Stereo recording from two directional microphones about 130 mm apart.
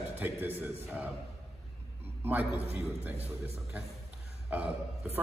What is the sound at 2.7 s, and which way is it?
Speech, 15° right (ahead or behind).